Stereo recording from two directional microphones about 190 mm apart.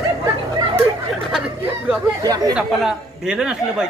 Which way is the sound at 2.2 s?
20° right (ahead or behind).